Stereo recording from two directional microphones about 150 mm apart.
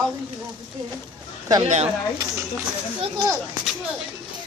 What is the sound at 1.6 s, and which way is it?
Speech, 50° right (ahead or behind).